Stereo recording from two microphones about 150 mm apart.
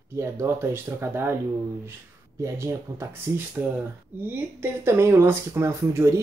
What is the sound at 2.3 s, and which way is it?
Speech, 20° right (ahead or behind).